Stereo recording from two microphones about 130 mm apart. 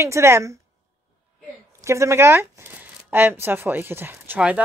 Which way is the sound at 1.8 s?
20° right (ahead or behind).